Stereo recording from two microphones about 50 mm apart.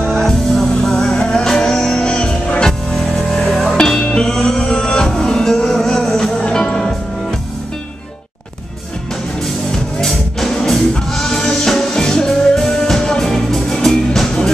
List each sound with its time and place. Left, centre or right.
0.0 s music: centre
9.7 s music: centre